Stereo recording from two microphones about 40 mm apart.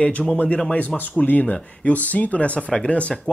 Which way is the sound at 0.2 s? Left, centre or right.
Centre.